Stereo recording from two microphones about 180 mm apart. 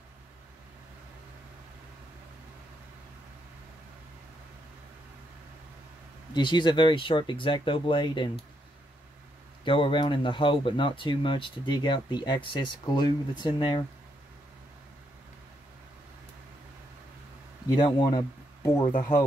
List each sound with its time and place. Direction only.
6.3 s speech: 25° left (ahead or behind)
9.7 s speech: 30° left (ahead or behind)
17.7 s speech: 25° left (ahead or behind)